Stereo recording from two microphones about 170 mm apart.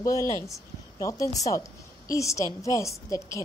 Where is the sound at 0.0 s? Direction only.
20° left (ahead or behind).